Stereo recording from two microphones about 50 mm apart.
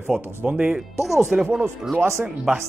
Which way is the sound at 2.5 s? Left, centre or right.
Centre.